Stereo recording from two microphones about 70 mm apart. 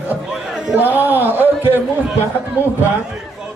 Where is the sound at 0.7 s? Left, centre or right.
Right.